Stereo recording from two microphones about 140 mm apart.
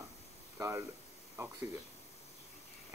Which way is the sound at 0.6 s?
20° right (ahead or behind).